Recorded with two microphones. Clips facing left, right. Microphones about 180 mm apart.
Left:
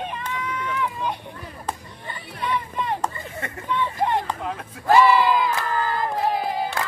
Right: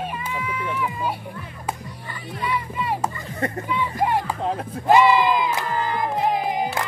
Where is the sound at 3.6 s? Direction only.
10° right (ahead or behind).